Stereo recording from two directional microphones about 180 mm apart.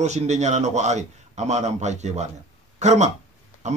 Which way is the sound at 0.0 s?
40° right (ahead or behind).